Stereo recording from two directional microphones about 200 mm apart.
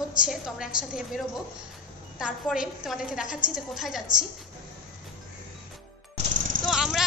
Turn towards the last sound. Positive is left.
turn(degrees=0)  # may be behind; listen again after turning